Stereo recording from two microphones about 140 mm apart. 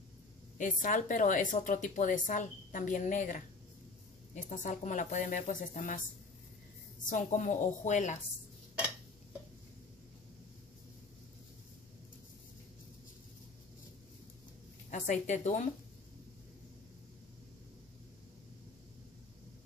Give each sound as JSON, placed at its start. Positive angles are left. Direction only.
{"t": 0.6, "sound": "speech", "side_deg": 70}
{"t": 7.1, "sound": "a woman's voice", "side_deg": 60}
{"t": 14.9, "sound": "a woman's voice", "side_deg": 60}